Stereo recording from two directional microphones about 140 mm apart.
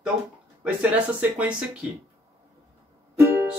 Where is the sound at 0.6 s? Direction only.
10° right (ahead or behind).